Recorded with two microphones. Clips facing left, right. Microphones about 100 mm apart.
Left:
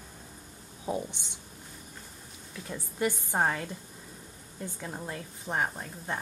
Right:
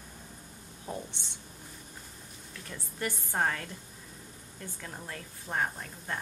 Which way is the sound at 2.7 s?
15° left (ahead or behind).